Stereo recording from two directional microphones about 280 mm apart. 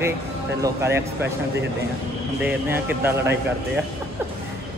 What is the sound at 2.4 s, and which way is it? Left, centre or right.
Speech, centre.